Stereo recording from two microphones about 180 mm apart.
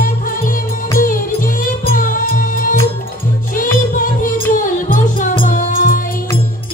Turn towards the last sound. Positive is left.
turn(degrees=50)  # may be behind; listen again after turning